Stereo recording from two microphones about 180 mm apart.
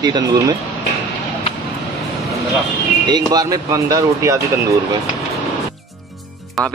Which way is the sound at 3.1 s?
20° right (ahead or behind).